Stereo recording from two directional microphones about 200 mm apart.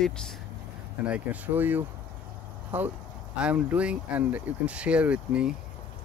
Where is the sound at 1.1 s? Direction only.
10° right (ahead or behind).